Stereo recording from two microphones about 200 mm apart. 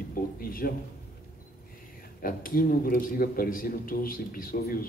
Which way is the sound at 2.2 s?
45° left (ahead or behind).